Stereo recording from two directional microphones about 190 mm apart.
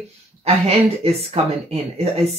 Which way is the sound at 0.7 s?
35° right (ahead or behind).